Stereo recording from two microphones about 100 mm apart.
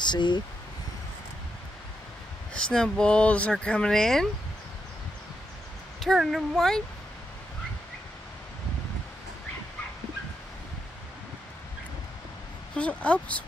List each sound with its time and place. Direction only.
0.0 s speech: 50° left (ahead or behind)
2.5 s speech: 5° left (ahead or behind)
5.9 s speech: centre (ahead or behind)
12.7 s speech: 10° left (ahead or behind)